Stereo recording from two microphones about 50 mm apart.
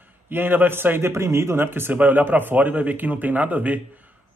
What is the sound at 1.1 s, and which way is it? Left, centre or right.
Speech, right.